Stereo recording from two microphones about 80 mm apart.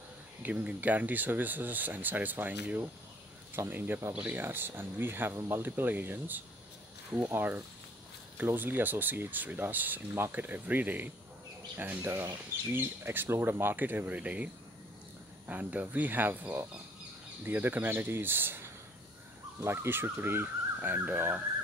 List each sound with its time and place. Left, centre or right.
0.4 s speech: centre